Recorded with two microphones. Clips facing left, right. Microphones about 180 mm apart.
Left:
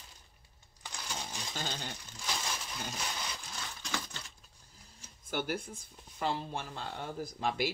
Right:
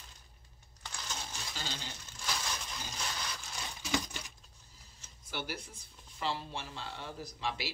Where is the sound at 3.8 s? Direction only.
15° right (ahead or behind).